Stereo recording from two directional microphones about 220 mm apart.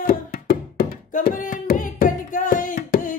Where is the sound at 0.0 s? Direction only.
40° left (ahead or behind).